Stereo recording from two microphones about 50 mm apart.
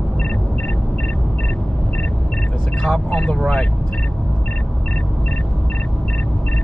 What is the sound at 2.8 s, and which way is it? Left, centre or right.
Speech, left.